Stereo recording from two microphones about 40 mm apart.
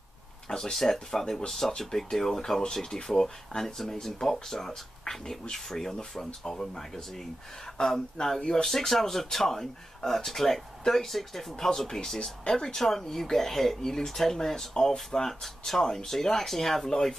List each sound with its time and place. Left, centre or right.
0.5 s speech: centre